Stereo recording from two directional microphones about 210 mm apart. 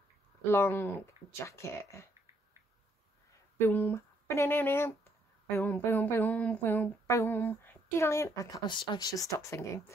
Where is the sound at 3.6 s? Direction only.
10° left (ahead or behind).